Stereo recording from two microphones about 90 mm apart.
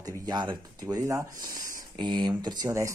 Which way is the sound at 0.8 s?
35° right (ahead or behind).